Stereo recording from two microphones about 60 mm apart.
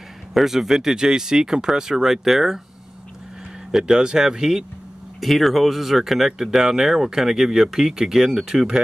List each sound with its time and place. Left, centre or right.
0.3 s speech: centre
3.7 s speech: centre